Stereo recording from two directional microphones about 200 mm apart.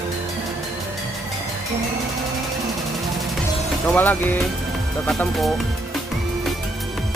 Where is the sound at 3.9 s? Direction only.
10° left (ahead or behind).